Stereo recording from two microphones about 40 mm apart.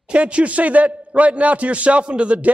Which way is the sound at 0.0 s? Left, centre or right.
Right.